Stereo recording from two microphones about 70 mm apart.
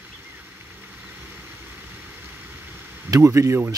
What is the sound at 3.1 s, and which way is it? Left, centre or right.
Speech, right.